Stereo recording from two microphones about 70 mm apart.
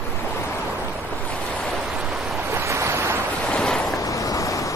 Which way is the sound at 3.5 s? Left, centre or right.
Centre.